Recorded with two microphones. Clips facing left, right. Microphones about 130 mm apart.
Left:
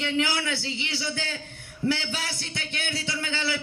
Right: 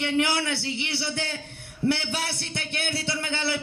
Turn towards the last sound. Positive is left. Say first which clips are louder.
# right 1 dB
turn(degrees=-60)  # may be behind; listen again after turning